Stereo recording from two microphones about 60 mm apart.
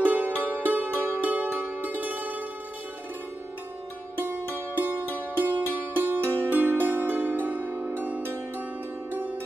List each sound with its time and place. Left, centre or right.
0.0 s music: right
0.7 s zither: right
5.3 s music: right
8.2 s zither: right
9.1 s music: right